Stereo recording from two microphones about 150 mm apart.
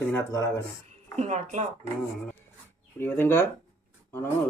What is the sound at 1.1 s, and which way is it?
Speech, 50° right (ahead or behind).